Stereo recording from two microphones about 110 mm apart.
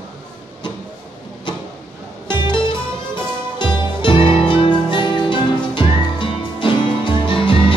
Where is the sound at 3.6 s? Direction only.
45° left (ahead or behind).